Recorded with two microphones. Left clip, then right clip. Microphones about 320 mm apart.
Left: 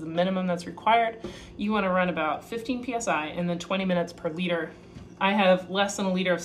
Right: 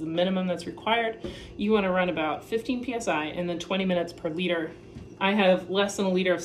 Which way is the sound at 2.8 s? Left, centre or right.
Centre.